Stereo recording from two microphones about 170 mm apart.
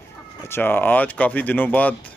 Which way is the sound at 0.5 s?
10° left (ahead or behind).